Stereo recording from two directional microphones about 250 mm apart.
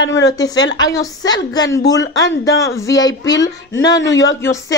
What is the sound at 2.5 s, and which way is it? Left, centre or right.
Speech, centre.